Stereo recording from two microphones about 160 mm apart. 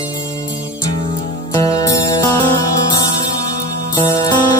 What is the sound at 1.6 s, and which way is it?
Music, 20° left (ahead or behind).